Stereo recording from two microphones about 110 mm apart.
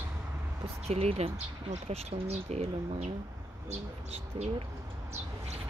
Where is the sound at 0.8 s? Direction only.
70° right (ahead or behind).